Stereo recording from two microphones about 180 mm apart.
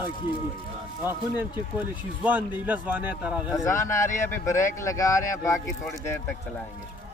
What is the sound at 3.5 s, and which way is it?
Speech, 15° left (ahead or behind).